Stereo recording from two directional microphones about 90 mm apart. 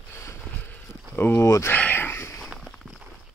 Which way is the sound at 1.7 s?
20° left (ahead or behind).